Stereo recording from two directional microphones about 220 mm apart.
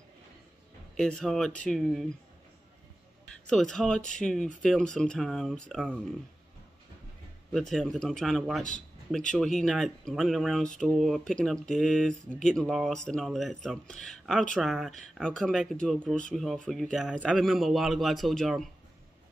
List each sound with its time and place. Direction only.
0.9 s speech: 5° left (ahead or behind)
3.4 s speech: centre (ahead or behind)
7.5 s speech: centre (ahead or behind)